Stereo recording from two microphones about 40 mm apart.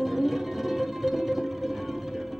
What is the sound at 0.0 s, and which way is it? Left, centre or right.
Music, centre.